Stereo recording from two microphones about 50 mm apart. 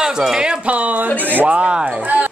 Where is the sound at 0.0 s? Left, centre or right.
Centre; by 2.3 s right.